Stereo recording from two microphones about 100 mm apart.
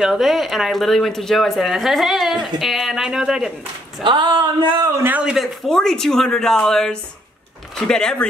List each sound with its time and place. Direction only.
0.0 s speech: 5° right (ahead or behind)
4.0 s speech: 50° right (ahead or behind)
4.9 s a man's voice: 20° right (ahead or behind)
5.2 s speech: 5° right (ahead or behind)
5.7 s speech: 5° left (ahead or behind)